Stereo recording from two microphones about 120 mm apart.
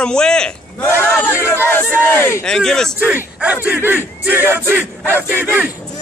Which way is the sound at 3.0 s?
15° right (ahead or behind).